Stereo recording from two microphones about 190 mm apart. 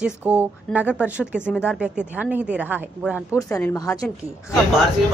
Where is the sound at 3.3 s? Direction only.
15° left (ahead or behind).